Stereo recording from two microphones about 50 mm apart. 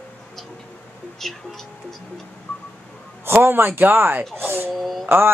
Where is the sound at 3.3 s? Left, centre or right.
Right.